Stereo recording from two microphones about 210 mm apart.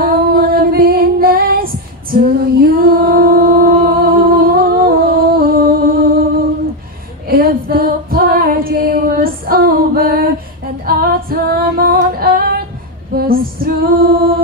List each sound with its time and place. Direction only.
0.0 s female singing: 45° right (ahead or behind)
7.2 s female singing: 45° right (ahead or behind)